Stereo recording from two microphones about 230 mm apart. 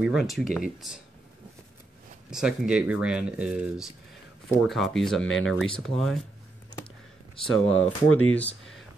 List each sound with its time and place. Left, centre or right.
0.0 s speech: centre
2.3 s speech: centre
7.4 s speech: centre
7.8 s speech: left
8.4 s speech: centre